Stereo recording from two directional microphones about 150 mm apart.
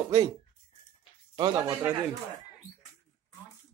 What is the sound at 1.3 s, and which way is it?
Speech, 30° right (ahead or behind).